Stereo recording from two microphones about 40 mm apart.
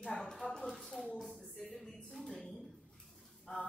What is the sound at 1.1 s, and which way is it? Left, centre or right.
Speech, centre.